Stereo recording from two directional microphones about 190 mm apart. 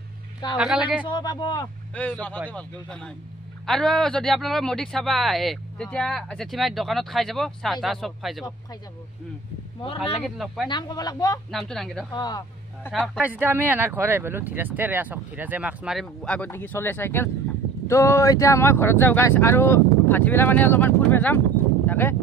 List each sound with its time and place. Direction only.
0.6 s speech: 5° right (ahead or behind)
1.0 s speech: 25° left (ahead or behind)
2.0 s speech: 5° left (ahead or behind)
10.2 s speech: centre (ahead or behind)
10.7 s speech: 20° left (ahead or behind)
11.5 s speech: centre (ahead or behind)
12.1 s speech: 20° left (ahead or behind)
12.9 s speech: 5° left (ahead or behind)
13.2 s speech: 10° right (ahead or behind); by 22.1 s 10° left (ahead or behind)